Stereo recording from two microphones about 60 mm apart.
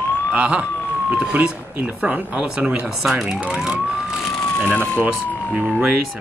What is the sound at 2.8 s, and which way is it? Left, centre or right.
Speech, centre.